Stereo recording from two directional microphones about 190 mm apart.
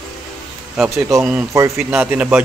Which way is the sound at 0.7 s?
5° right (ahead or behind).